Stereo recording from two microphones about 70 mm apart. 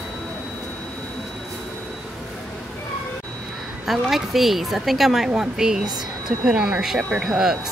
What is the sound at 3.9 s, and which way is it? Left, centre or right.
A woman's voice, centre.